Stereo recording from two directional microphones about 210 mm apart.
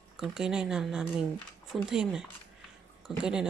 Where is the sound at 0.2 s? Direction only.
5° right (ahead or behind).